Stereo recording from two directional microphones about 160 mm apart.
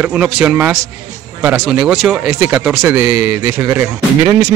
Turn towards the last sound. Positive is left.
turn(degrees=-15)  # may be behind; listen again after turning